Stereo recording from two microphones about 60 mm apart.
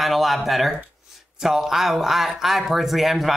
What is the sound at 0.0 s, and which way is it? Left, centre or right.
Speech, centre.